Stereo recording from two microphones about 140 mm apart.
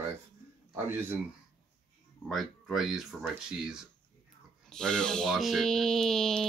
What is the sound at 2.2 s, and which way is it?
Speech, centre (ahead or behind).